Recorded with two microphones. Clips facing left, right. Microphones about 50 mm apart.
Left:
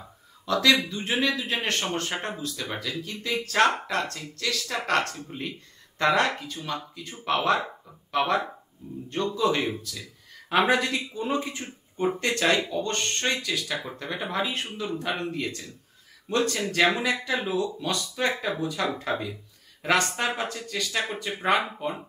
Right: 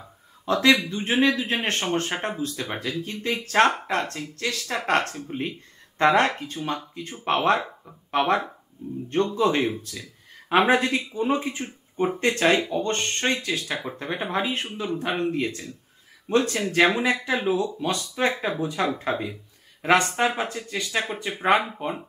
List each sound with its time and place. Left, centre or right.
0.5 s speech: right
16.9 s speech: right